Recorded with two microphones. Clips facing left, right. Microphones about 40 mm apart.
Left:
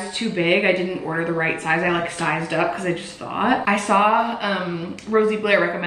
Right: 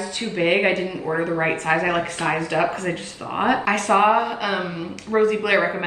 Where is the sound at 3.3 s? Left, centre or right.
Centre.